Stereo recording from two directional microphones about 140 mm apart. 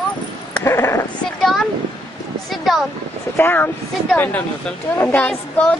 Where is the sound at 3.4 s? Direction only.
15° left (ahead or behind).